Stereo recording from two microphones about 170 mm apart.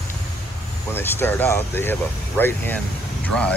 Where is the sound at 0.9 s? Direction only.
15° left (ahead or behind).